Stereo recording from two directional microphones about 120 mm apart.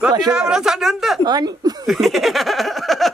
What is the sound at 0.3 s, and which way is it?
Speech, 5° right (ahead or behind).